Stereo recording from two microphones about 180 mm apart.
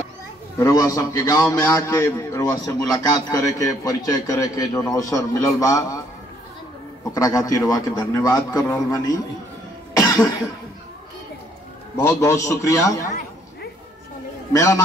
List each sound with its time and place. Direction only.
0.6 s a man's voice: 15° left (ahead or behind)
7.2 s a man's voice: 20° left (ahead or behind)
9.9 s cough: 20° left (ahead or behind)
12.0 s a man's voice: 15° left (ahead or behind)
14.5 s a man's voice: 20° left (ahead or behind)